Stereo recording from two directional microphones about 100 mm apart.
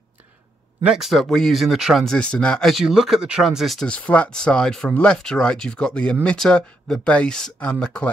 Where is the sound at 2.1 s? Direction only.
10° left (ahead or behind).